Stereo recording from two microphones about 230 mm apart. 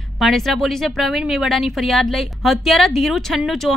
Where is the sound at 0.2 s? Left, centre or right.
Centre.